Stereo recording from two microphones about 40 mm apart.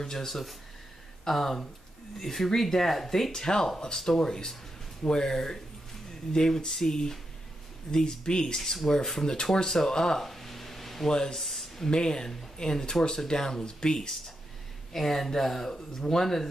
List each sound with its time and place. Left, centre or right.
0.0 s speech: centre
8.8 s speech: centre
10.2 s a sound: centre
11.1 s speech: centre
11.4 s a sound: centre
11.9 s speech: centre